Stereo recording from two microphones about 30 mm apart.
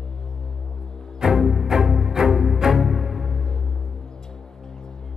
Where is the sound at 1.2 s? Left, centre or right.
Centre.